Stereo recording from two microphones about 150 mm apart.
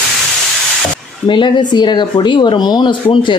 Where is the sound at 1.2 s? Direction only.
30° left (ahead or behind).